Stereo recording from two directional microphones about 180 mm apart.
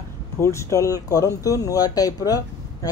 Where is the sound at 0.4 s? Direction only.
15° left (ahead or behind).